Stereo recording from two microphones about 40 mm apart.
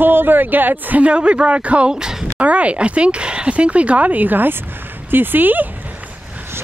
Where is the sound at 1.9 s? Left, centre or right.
Centre.